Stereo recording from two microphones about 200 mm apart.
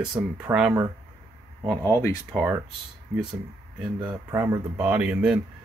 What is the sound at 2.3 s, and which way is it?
Speech, 5° right (ahead or behind).